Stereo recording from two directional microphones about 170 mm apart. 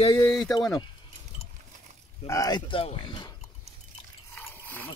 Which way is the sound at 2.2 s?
20° left (ahead or behind).